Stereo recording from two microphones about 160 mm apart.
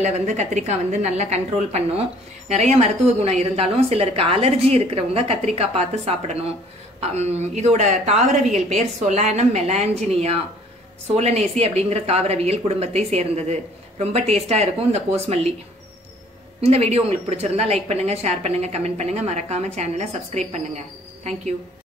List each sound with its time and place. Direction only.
0.0 s a woman's voice: 45° right (ahead or behind)
16.6 s a woman's voice: 40° right (ahead or behind)